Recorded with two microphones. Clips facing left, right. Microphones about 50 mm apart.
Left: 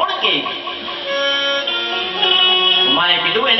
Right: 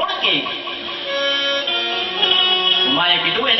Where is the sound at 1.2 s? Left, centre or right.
Left.